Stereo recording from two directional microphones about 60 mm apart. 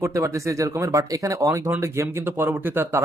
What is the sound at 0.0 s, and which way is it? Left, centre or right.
Speech, right.